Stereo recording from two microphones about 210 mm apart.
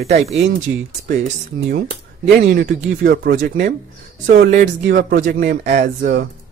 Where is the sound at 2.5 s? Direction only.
45° right (ahead or behind).